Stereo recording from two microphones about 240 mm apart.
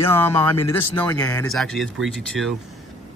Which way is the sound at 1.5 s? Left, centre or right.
Centre.